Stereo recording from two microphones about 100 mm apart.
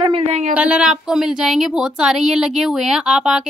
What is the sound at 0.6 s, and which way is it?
Speech, 10° right (ahead or behind).